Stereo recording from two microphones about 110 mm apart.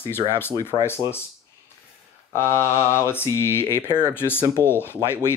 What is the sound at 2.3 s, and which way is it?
Speech, 20° left (ahead or behind).